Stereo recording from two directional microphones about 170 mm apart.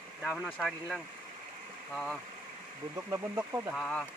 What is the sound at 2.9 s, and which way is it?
Speech, 15° right (ahead or behind).